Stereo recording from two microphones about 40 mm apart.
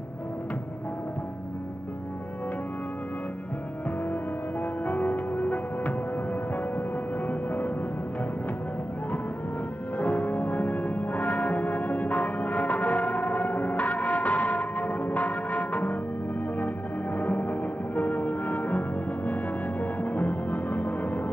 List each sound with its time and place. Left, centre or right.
4.8 s music: left
7.2 s music: left
9.9 s music: left